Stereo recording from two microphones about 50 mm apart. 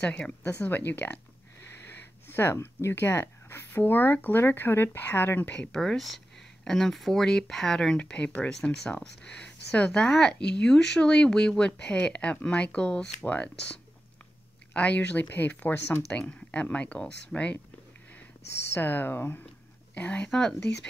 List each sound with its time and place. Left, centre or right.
0.0 s speech: left
2.2 s a sound: left
2.5 s speech: left
5.4 s speech: left
5.7 s speech: centre
8.0 s speech: left
9.8 s speech: centre
13.2 s speech: left
14.7 s speech: left
16.1 s speech: left
18.7 s speech: left
19.9 s speech: left
20.2 s speech: centre